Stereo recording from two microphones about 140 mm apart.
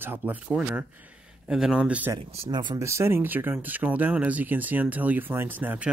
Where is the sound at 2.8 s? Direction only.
20° right (ahead or behind).